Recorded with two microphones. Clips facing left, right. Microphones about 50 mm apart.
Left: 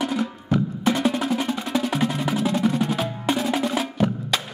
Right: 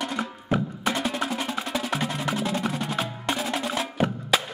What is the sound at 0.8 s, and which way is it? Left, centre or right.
Percussion, centre.